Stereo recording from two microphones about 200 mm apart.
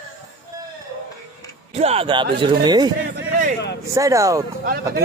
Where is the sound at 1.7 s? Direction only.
30° right (ahead or behind).